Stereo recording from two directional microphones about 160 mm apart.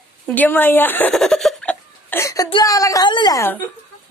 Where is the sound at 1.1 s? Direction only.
Centre (ahead or behind); by 2.4 s 20° left (ahead or behind).